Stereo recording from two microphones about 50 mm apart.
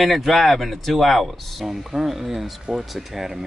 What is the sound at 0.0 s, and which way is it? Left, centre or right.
Speech, centre.